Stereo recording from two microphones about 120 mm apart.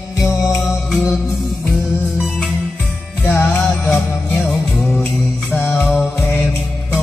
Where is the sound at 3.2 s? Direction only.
15° left (ahead or behind).